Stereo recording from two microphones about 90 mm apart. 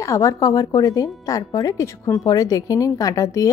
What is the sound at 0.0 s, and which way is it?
Speech, 35° left (ahead or behind).